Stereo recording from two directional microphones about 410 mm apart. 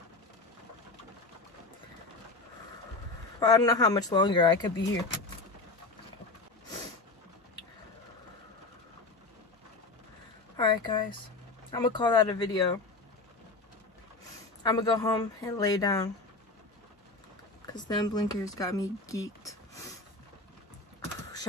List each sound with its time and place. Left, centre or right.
3.3 s speech: centre
10.5 s a sound: centre
11.7 s speech: centre
14.6 s speech: centre
17.6 s speech: centre